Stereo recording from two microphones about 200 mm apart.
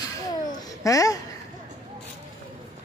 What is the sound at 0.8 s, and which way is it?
Speech, 15° left (ahead or behind).